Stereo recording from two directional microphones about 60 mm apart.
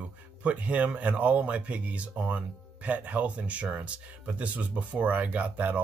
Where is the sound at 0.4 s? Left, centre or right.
Right.